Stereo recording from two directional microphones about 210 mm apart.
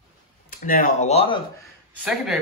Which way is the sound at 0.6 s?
40° left (ahead or behind).